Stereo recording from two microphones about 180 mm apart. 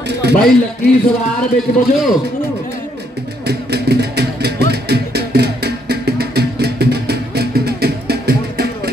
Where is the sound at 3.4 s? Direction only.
65° right (ahead or behind).